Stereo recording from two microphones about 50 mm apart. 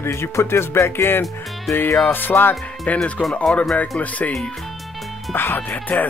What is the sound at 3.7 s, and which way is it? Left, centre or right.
Speech, left.